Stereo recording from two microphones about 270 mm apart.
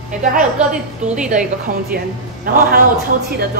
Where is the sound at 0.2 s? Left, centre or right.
Right.